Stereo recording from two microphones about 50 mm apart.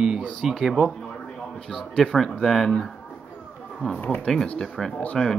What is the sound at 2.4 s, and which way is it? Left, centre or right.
Speech, centre.